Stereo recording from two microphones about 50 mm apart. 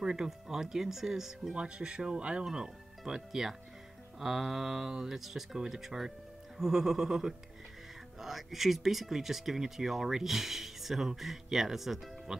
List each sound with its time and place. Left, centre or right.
0.0 s speech: centre
1.5 s speech: centre